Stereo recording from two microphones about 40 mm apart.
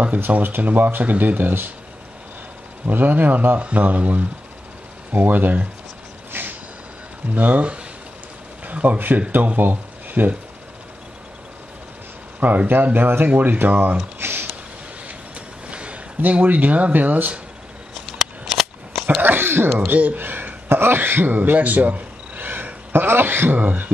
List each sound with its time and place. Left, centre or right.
0.4 s speech: right
2.9 s speech: right
6.3 s a sound: right
7.3 s speech: right
12.4 s speech: right
14.2 s a sound: right
15.0 s train: right
16.2 s speech: right
18.1 s a sound: centre
19.2 s a sound: right
19.9 s speech: right
20.6 s speech: right
22.9 s speech: right
23.5 s speech: right